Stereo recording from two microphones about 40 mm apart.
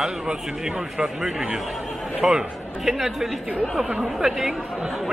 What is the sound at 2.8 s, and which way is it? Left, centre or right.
A man's voice, centre.